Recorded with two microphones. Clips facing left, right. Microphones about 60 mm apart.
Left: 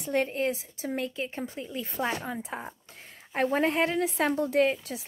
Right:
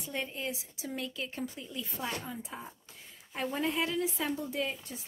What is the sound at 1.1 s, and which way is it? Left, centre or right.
Speech, left.